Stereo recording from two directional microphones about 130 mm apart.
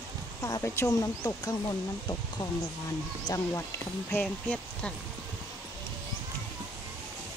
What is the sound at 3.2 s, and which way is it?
Speech, 25° left (ahead or behind).